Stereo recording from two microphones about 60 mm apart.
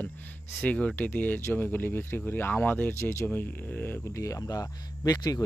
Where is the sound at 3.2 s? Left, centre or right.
Left.